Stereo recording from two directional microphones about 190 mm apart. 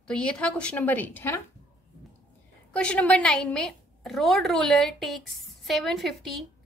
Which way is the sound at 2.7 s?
5° left (ahead or behind).